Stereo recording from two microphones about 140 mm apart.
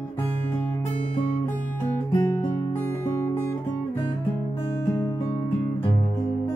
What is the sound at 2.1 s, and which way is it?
Music, 20° left (ahead or behind).